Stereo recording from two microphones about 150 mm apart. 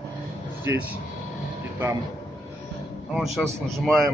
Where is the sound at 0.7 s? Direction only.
20° right (ahead or behind).